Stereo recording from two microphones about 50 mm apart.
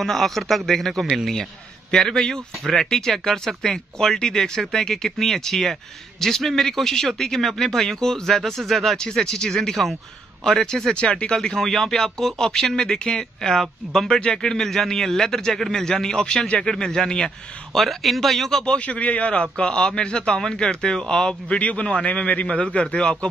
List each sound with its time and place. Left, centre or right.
0.0 s speech: centre
8.9 s speech: centre
17.7 s speech: centre
18.8 s speech: left
21.5 s a man's voice: left